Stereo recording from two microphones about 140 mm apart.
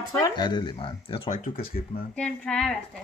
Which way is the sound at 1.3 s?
75° left (ahead or behind).